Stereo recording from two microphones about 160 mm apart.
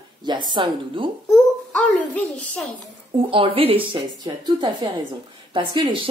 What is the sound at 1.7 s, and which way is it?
Speech, 5° left (ahead or behind).